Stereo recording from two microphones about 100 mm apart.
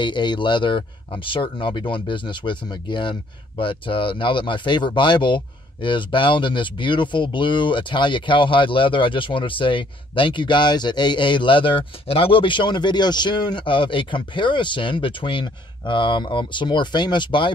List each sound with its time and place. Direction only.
0.0 s speech: 50° left (ahead or behind)